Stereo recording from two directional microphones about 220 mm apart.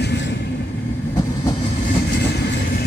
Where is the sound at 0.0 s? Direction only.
50° left (ahead or behind).